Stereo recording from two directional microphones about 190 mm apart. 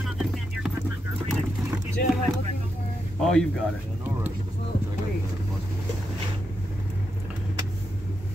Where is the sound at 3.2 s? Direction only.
Centre (ahead or behind).